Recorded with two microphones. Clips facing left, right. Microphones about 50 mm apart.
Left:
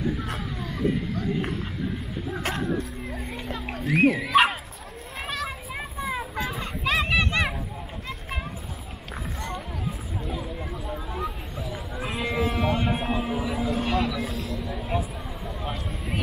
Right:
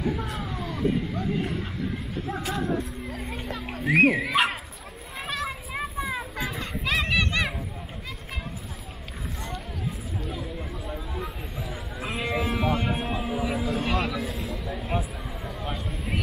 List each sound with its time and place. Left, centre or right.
2.5 s music: left
3.9 s speech: right
4.2 s speech: centre
5.2 s children playing: centre
10.2 s a sound: centre